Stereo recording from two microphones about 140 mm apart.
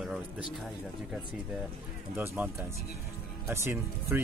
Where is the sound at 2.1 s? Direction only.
15° right (ahead or behind).